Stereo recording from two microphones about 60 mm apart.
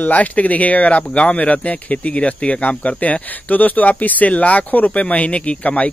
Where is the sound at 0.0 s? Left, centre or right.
Left.